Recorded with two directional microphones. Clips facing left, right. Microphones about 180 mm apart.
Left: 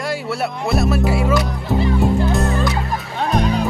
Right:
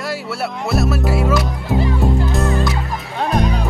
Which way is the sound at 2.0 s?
Centre (ahead or behind).